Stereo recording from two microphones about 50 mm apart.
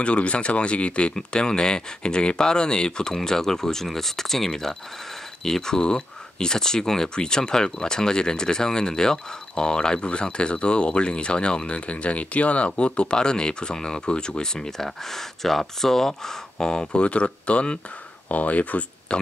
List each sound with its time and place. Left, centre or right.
0.0 s speech: left